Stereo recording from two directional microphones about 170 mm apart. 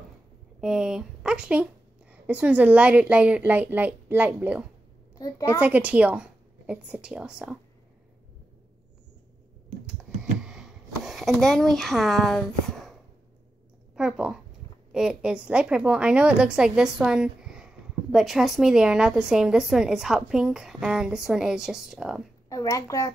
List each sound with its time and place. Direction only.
0.6 s a woman's voice: 5° right (ahead or behind)
5.1 s a child's voice: 20° left (ahead or behind)
5.6 s a woman's voice: 10° right (ahead or behind)
10.4 s a sound: centre (ahead or behind)
13.9 s a woman's voice: 5° right (ahead or behind)
22.5 s a child's voice: 20° left (ahead or behind)